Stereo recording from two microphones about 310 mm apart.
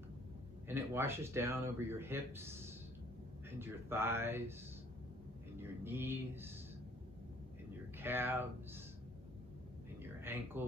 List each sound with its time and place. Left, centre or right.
0.7 s speech: centre
5.6 s speech: centre
8.0 s speech: centre
10.2 s speech: centre